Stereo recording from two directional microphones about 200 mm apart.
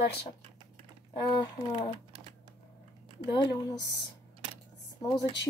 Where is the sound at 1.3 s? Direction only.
25° left (ahead or behind).